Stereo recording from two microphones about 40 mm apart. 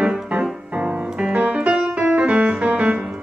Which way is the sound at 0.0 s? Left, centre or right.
Right.